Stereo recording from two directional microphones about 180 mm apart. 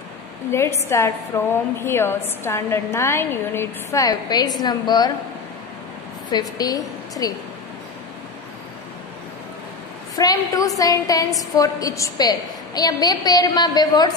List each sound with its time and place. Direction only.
0.5 s a woman's voice: 15° left (ahead or behind)
6.3 s a woman's voice: 20° left (ahead or behind)
10.1 s a woman's voice: 20° left (ahead or behind)